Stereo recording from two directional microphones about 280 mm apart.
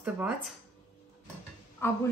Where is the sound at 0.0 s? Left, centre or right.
Centre.